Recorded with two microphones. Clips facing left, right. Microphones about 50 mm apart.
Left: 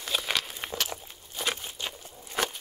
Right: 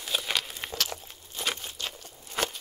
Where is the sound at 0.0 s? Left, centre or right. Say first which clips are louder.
Left 1 dB; centre.